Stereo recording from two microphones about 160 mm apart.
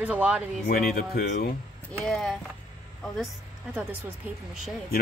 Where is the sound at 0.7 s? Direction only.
65° left (ahead or behind).